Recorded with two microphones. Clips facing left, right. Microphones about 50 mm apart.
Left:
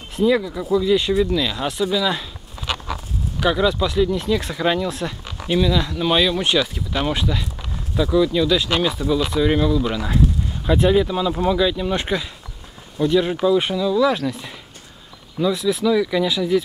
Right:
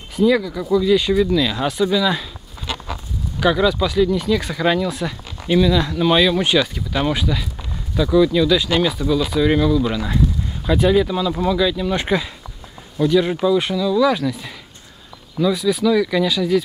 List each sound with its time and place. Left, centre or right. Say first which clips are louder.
0.2 s speech: right 2 dB; centre
3.3 s speech: right 2 dB; centre
13.4 s speech: even; centre
15.3 s speech: right 2 dB; centre